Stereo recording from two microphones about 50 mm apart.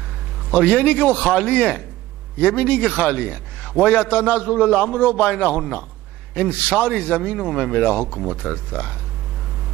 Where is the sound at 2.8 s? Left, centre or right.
Centre.